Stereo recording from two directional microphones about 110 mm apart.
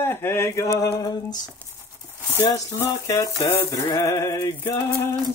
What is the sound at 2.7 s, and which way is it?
Music, 30° left (ahead or behind).